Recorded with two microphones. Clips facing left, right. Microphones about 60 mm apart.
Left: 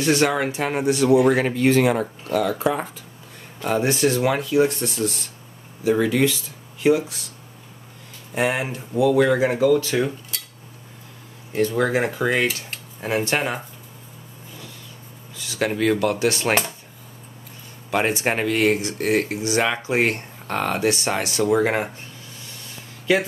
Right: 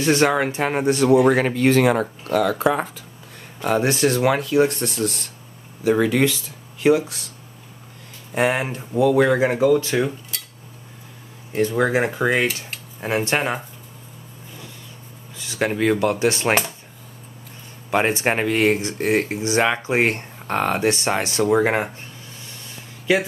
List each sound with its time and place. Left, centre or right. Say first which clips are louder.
0.0 s speech: right 2 dB; right
8.4 s speech: right 2 dB; right
11.5 s speech: right 1 dB; centre
15.3 s a sound: right 1 dB; right
15.7 s speech: right 1 dB; right
17.9 s speech: right 2 dB; right